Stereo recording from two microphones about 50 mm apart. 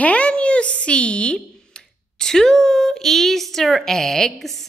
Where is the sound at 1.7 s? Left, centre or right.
Centre.